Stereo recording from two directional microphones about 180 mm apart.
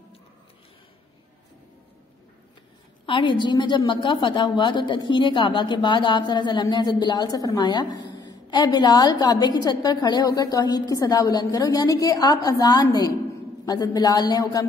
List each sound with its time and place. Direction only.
3.1 s a woman's voice: 25° left (ahead or behind)